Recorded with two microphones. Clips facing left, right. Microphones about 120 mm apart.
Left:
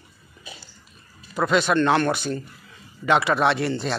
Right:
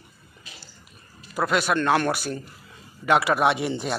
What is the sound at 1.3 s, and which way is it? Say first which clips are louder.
Speech: left 3 dB; 5° right (ahead or behind).